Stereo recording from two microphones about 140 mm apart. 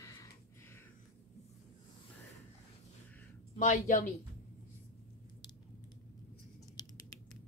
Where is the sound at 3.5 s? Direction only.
65° left (ahead or behind).